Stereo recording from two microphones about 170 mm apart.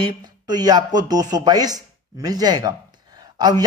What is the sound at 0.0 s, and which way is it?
Speech, 25° right (ahead or behind).